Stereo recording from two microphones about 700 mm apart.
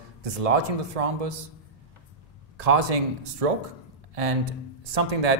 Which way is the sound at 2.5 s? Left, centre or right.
Right.